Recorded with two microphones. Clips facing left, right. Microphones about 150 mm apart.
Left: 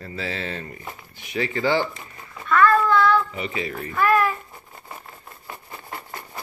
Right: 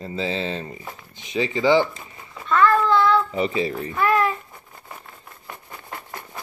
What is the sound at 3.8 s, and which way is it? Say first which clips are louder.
Speech: left 2 dB; 20° right (ahead or behind).